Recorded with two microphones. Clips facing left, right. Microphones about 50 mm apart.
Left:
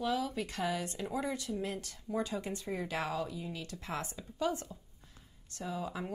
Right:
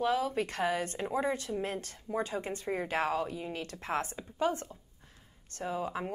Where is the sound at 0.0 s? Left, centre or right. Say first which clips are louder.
Right 4 dB; right.